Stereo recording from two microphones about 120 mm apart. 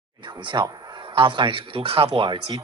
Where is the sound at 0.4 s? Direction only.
45° right (ahead or behind).